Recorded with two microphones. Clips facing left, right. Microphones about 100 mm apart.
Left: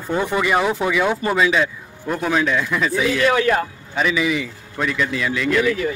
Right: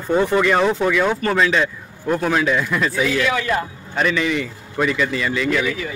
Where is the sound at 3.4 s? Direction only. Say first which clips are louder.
Left 3 dB; 60° left (ahead or behind).